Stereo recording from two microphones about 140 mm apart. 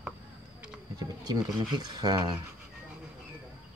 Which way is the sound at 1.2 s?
30° right (ahead or behind).